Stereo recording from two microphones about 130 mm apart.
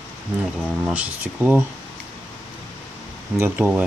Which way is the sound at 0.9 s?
10° right (ahead or behind).